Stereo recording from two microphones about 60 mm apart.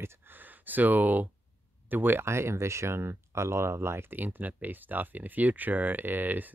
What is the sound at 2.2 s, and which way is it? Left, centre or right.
Speech, right.